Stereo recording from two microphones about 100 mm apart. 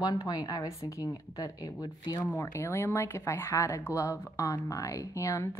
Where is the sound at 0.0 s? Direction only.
40° left (ahead or behind).